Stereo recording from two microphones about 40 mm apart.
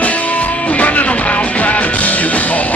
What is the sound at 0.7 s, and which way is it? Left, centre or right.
Music, left.